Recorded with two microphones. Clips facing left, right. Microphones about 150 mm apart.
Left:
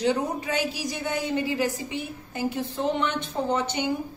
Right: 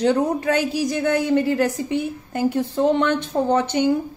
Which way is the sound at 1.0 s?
70° right (ahead or behind).